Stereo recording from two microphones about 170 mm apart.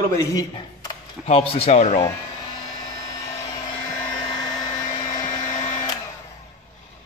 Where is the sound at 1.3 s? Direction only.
35° left (ahead or behind).